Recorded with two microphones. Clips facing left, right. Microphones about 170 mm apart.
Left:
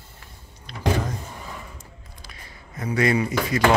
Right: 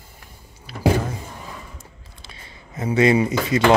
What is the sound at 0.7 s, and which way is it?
Speech, 5° right (ahead or behind).